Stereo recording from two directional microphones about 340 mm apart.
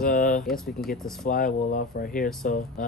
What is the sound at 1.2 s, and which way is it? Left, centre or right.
Speech, left.